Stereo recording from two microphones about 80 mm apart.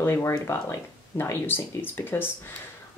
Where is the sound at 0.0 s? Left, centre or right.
Left.